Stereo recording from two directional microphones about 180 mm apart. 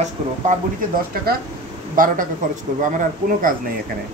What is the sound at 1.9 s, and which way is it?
A woman's voice, 50° right (ahead or behind).